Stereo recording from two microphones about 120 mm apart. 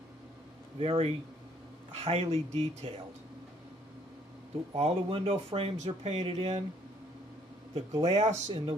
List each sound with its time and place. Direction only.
0.7 s speech: 50° right (ahead or behind)
4.7 s speech: 55° right (ahead or behind)
8.0 s speech: 55° right (ahead or behind)